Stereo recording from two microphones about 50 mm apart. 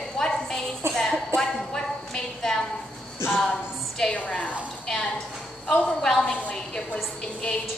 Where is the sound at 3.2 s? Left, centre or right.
Left.